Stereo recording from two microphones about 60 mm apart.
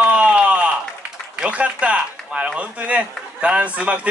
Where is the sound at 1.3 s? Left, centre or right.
Right.